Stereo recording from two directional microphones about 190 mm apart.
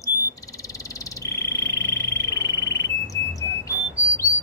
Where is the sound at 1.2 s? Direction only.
15° left (ahead or behind).